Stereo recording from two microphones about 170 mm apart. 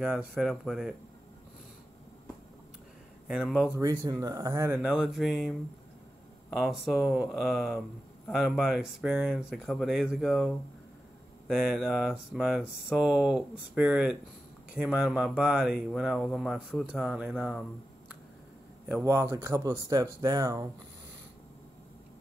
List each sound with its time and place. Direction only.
0.0 s speech: 5° right (ahead or behind)
3.3 s speech: 5° right (ahead or behind)
3.7 s speech: 15° right (ahead or behind)
4.8 s speech: centre (ahead or behind)
18.9 s speech: 15° right (ahead or behind)